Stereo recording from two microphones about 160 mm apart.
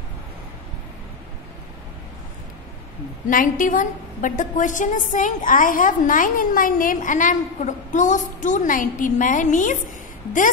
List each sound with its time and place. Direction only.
3.3 s a woman's voice: 60° left (ahead or behind)